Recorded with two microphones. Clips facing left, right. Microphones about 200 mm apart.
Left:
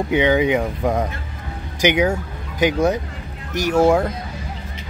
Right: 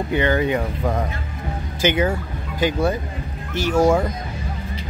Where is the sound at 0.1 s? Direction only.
15° left (ahead or behind).